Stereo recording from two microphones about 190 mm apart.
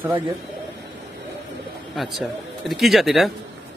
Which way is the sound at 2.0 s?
Centre (ahead or behind).